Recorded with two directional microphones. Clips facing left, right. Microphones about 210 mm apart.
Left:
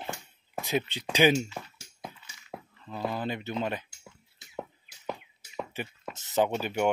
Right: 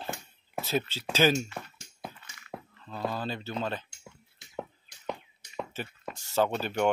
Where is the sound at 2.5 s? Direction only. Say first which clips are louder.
Right 1 dB; 5° left (ahead or behind).